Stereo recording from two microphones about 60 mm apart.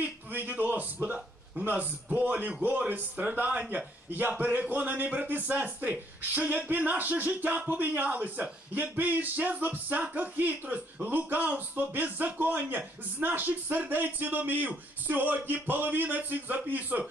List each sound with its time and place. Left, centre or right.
0.0 s a man's voice: right